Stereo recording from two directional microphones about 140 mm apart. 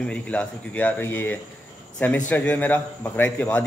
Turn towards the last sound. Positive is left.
turn(degrees=15)  # may be behind; listen again after turning